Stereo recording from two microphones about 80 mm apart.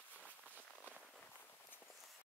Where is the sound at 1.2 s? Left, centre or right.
Centre.